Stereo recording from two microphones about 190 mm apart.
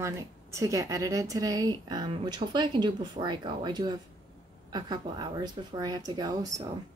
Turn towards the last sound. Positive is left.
turn(degrees=-20)  # may be behind; listen again after turning